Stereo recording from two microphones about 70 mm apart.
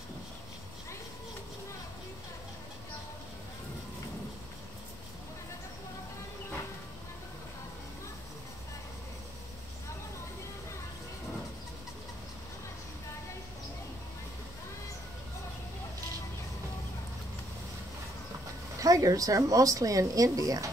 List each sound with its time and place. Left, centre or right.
18.8 s speech: right